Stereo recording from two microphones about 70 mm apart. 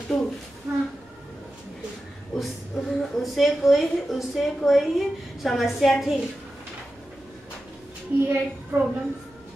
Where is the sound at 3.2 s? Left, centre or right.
Centre.